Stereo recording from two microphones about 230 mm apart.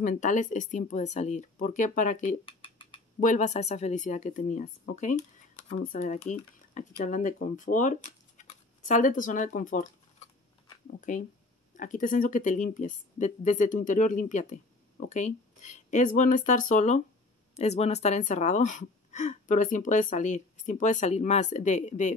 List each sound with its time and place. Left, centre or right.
0.0 s speech: left
11.0 s speech: left